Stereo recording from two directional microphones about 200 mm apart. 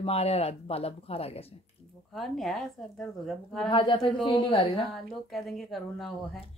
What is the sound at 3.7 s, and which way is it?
A woman's voice, 25° left (ahead or behind).